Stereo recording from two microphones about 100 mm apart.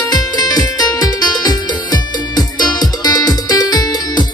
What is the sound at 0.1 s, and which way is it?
Music, 40° left (ahead or behind).